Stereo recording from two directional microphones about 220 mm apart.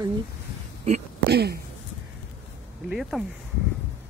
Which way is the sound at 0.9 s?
30° right (ahead or behind).